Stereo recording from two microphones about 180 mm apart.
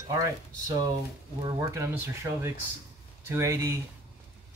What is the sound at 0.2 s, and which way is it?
Speech, 20° right (ahead or behind).